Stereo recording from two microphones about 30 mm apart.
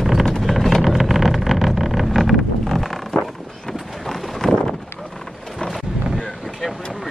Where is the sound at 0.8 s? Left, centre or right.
Centre.